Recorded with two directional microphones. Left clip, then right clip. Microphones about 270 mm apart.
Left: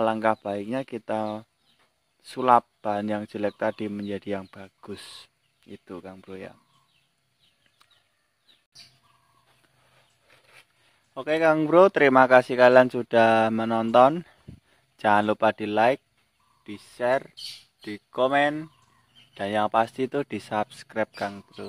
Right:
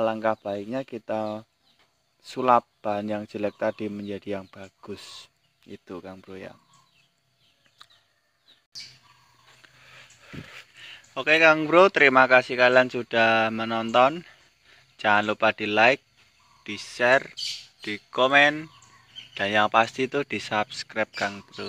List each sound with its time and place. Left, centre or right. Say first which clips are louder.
0.0 s speech: left 1 dB; centre
9.6 s a sound: right 12 dB; centre
11.1 s speech: right 3 dB; centre